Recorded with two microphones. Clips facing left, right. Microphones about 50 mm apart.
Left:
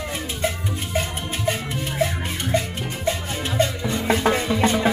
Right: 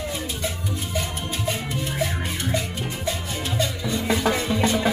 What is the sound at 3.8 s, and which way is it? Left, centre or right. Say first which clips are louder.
Music: left 2 dB; left.